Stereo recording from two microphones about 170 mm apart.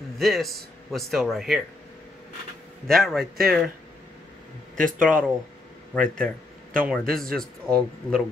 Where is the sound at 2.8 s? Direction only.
Centre (ahead or behind).